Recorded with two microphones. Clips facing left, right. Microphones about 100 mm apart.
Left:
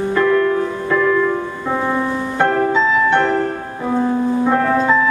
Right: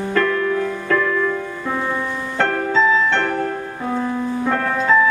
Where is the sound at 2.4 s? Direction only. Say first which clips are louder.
Left 2 dB; 15° left (ahead or behind).